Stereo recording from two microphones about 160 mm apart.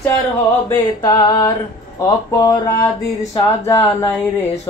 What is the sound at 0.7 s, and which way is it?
Speech, 25° left (ahead or behind).